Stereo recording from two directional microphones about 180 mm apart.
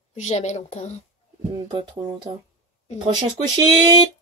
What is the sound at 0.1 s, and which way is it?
Speech, 40° left (ahead or behind).